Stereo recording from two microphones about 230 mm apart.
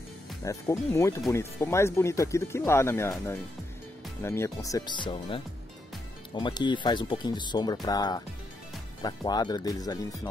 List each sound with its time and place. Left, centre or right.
0.5 s speech: centre